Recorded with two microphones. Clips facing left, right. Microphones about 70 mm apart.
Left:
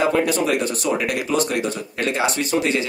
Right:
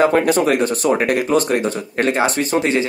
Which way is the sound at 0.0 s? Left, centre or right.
Right.